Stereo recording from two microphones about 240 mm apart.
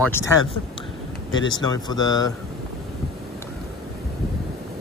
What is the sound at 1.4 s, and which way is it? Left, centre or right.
Speech, centre.